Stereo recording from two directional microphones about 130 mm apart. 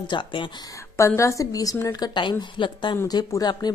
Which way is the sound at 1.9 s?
35° left (ahead or behind).